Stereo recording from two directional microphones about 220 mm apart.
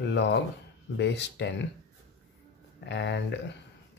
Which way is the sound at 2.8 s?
50° left (ahead or behind).